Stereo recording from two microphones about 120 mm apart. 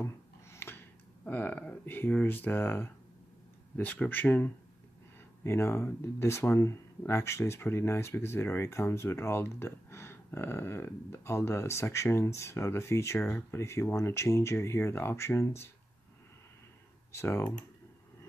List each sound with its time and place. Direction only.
0.0 s a sound: 20° left (ahead or behind)
3.7 s speech: 15° left (ahead or behind)
17.1 s speech: 20° left (ahead or behind)